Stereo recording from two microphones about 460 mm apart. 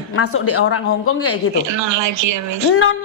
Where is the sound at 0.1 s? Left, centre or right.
Left.